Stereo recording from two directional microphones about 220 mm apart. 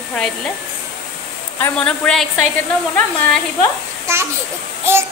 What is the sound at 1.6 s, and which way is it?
Speech, 5° left (ahead or behind).